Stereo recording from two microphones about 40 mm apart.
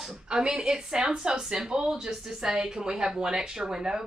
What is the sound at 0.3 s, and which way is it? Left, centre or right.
Speech, centre.